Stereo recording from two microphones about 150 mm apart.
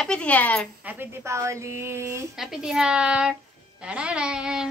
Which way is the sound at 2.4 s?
5° right (ahead or behind).